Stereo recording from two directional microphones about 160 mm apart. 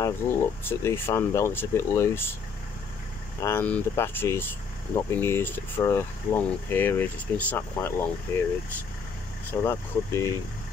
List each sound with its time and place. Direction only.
0.0 s speech: 15° left (ahead or behind)
3.3 s speech: 15° left (ahead or behind)
9.5 s speech: 15° left (ahead or behind)